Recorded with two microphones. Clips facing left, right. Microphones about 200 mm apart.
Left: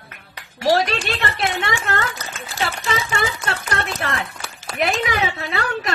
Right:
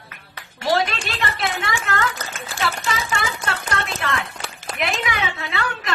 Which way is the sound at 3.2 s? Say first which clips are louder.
Left 2 dB; 35° left (ahead or behind).